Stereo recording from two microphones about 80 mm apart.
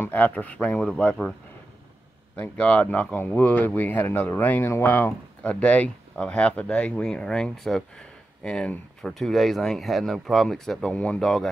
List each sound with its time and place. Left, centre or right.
0.1 s speech: centre
2.3 s speech: centre
5.4 s speech: centre
10.9 s speech: centre